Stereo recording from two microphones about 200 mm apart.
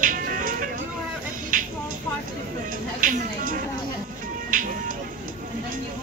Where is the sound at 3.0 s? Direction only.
40° right (ahead or behind).